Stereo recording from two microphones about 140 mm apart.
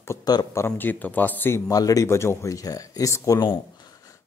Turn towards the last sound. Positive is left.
turn(degrees=30)  # may be behind; listen again after turning